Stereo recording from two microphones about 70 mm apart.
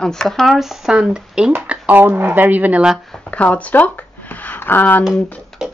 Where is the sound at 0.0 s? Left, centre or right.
Centre.